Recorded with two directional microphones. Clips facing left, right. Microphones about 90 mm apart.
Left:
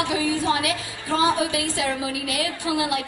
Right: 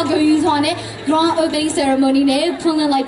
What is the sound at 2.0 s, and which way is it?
Speech, 25° right (ahead or behind).